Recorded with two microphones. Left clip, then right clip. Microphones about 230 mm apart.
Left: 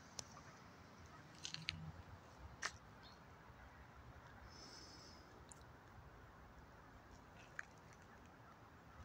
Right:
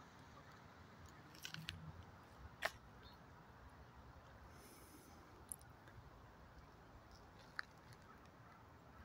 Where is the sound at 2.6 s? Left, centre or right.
Centre.